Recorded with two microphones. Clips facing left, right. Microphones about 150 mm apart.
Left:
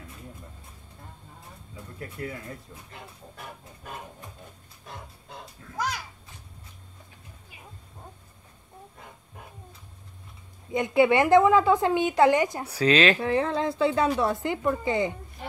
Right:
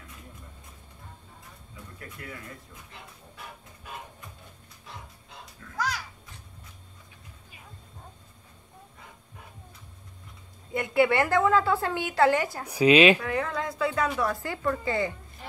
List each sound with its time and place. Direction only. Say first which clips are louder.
2.0 s speech: left 7 dB; 30° left (ahead or behind)
5.4 s a sound: left 1 dB; 20° left (ahead or behind)
10.7 s a woman's voice: left 3 dB; 20° left (ahead or behind)
12.6 s speech: right 6 dB; 15° right (ahead or behind)
13.2 s speech: left 5 dB; 30° left (ahead or behind)